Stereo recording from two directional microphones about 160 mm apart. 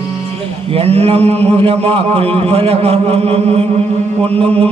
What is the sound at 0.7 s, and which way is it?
Chant, 40° right (ahead or behind).